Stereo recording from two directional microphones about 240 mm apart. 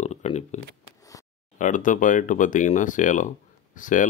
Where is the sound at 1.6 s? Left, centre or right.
Left.